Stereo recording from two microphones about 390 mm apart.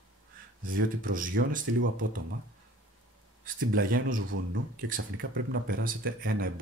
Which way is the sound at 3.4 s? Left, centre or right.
Right.